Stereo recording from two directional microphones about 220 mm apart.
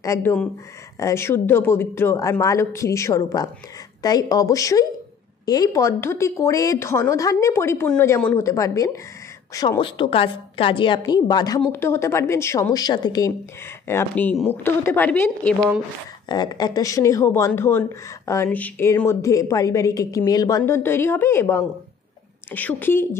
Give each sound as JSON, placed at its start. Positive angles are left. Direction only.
{"t": 0.0, "sound": "a woman's voice", "side_deg": 10}